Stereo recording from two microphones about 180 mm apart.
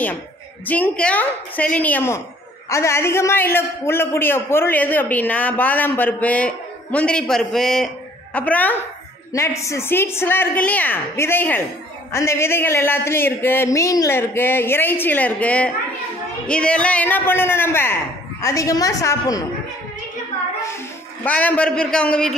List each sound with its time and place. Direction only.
0.7 s a man's voice: 10° left (ahead or behind)
20.6 s a man's voice: 15° left (ahead or behind)